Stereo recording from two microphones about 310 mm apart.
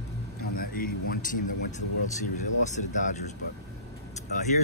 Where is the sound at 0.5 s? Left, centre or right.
Left.